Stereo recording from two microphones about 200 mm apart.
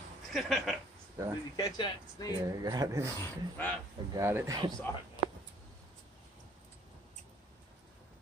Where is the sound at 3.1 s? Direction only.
10° left (ahead or behind).